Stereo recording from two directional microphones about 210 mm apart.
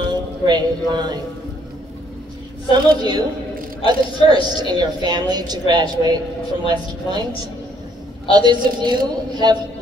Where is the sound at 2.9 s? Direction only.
20° right (ahead or behind).